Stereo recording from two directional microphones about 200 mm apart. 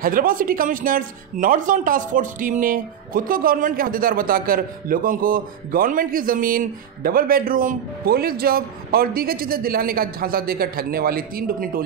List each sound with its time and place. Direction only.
0.0 s speech: 45° right (ahead or behind)